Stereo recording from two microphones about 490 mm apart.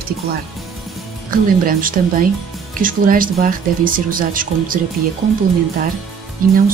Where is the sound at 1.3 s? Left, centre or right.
Centre.